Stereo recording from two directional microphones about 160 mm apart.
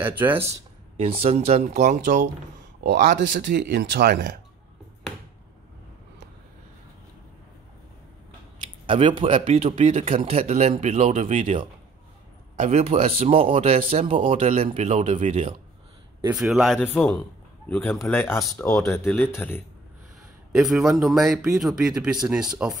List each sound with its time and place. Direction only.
0.0 s speech: 10° right (ahead or behind)
0.5 s speech: 40° right (ahead or behind)
3.2 s speech: 90° right; by 4.4 s 60° right (ahead or behind)
8.8 s speech: 30° right (ahead or behind)
9.4 s a man's voice: 40° right (ahead or behind)
12.5 s a man's voice: 45° right (ahead or behind)
16.3 s a man's voice: centre (ahead or behind)
16.8 s speech: 10° left (ahead or behind)
20.5 s a man's voice: 5° right (ahead or behind)